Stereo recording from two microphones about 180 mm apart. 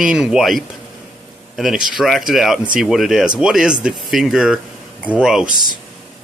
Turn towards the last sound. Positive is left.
turn(degrees=-5)  # may be behind; listen again after turning